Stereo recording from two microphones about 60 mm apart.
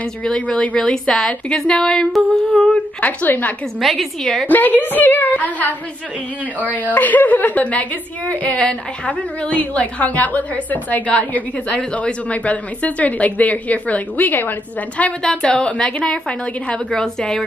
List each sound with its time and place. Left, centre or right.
0.2 s a woman's voice: centre
3.0 s a woman's voice: left
3.8 s a woman's voice: centre
4.5 s a woman's voice: left
15.2 s a woman's voice: centre